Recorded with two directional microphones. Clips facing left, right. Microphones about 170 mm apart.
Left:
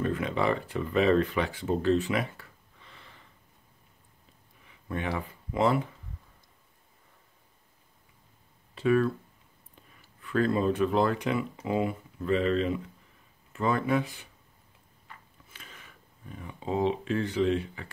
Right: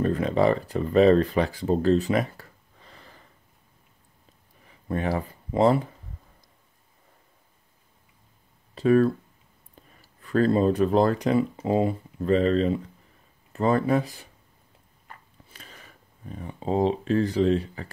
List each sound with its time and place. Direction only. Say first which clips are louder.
0.0 s speech: right 6 dB; 35° right (ahead or behind)
4.6 s speech: right 6 dB; 40° right (ahead or behind)
8.7 s speech: right 5 dB; 40° right (ahead or behind)
15.0 s a sound: right 3 dB; 40° right (ahead or behind)